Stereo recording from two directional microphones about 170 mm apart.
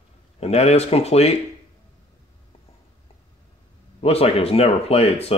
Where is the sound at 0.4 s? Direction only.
40° left (ahead or behind).